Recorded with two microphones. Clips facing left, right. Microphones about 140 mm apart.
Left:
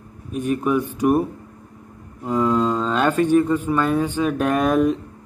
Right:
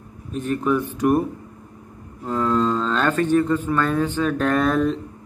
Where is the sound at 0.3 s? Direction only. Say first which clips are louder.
Left 1 dB; 10° left (ahead or behind).